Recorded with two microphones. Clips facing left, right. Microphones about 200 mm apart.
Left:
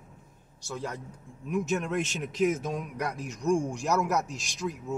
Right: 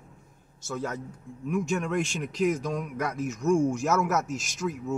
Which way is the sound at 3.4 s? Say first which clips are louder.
Right 3 dB; 15° left (ahead or behind).